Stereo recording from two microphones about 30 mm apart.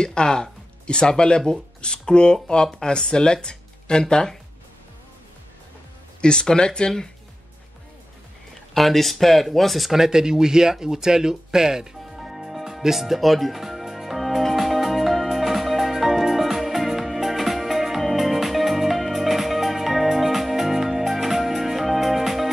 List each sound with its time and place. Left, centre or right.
0.0 s speech: left
6.2 s speech: left
8.7 s speech: centre
9.9 s speech: centre
12.2 s music: centre